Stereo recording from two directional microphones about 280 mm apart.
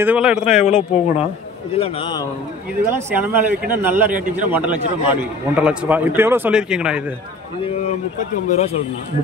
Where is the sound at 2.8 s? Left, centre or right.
Centre.